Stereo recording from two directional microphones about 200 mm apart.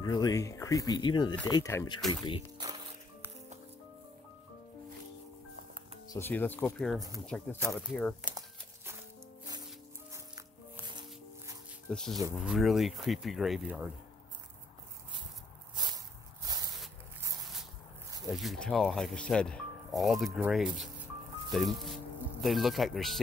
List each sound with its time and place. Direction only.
0.0 s speech: 20° left (ahead or behind)
2.6 s music: 25° right (ahead or behind)
6.0 s speech: 10° left (ahead or behind)
10.9 s music: 20° right (ahead or behind)
11.9 s speech: 5° left (ahead or behind)
16.4 s a sound: 20° right (ahead or behind)
18.3 s speech: centre (ahead or behind)